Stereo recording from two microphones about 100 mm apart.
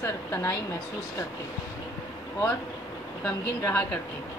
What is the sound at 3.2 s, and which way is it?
Speech, 20° left (ahead or behind).